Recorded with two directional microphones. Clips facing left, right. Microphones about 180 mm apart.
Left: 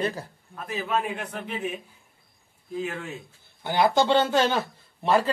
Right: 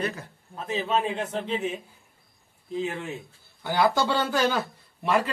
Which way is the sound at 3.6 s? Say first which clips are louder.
Left 2 dB; 20° left (ahead or behind).